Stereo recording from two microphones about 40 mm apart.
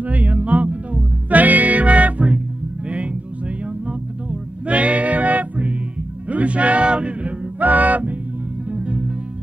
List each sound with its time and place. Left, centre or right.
0.0 s music: right
7.5 s music: right